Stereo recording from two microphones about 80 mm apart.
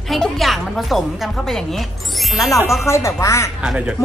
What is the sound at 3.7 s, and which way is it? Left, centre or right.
Speech, centre.